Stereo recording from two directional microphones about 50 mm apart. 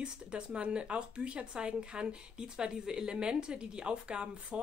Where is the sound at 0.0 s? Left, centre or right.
Centre.